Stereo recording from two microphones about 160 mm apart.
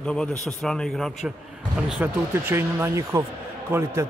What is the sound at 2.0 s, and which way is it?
Speech, 15° right (ahead or behind).